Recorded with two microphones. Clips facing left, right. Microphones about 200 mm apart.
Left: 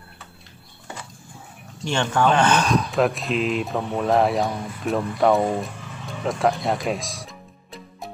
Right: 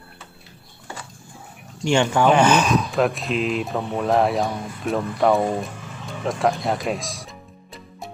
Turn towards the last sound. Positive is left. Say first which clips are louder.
# even
turn(degrees=0)  # may be behind; listen again after turning